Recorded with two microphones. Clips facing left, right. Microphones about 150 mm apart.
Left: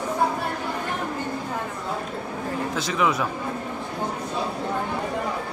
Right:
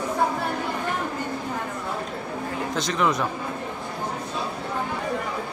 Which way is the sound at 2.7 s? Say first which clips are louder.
Right 1 dB; 5° left (ahead or behind).